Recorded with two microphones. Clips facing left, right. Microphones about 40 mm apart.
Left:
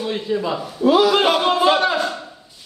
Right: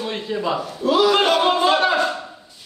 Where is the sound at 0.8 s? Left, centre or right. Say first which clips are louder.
Left 3 dB; centre.